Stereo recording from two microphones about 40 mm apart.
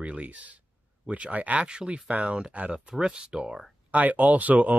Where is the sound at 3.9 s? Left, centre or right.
Right.